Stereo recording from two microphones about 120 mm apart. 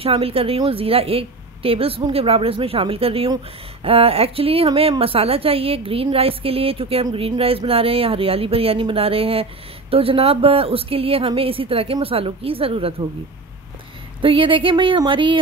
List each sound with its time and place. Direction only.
0.0 s a woman's voice: 55° right (ahead or behind)
14.2 s speech: 45° right (ahead or behind)